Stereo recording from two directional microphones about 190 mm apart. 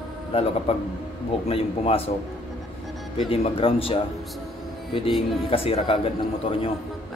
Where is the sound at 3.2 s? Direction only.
30° left (ahead or behind).